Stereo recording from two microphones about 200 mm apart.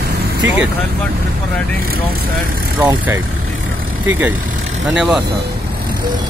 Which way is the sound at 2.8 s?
10° right (ahead or behind).